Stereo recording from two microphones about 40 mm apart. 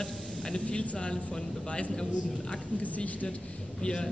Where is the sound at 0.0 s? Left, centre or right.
Left.